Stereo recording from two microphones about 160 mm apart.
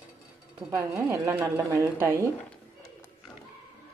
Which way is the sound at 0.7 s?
20° right (ahead or behind).